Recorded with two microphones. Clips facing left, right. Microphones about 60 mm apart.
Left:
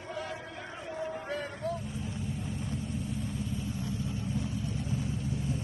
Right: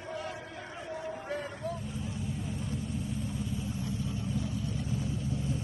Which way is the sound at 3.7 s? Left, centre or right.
Left.